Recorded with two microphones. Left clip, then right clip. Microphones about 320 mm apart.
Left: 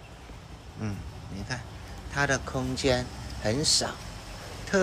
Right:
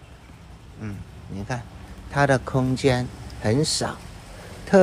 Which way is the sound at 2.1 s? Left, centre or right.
Centre.